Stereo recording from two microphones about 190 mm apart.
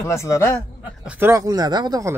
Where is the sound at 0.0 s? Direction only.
15° left (ahead or behind).